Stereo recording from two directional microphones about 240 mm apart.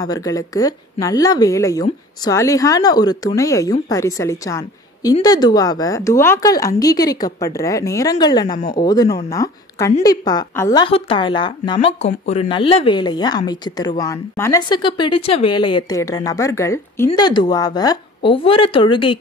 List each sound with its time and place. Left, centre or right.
0.0 s speech: centre